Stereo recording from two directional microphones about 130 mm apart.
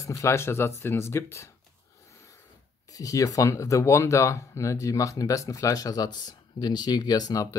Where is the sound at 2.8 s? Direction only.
25° left (ahead or behind).